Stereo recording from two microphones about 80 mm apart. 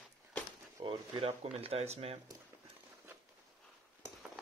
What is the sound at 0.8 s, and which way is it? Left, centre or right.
Speech, right.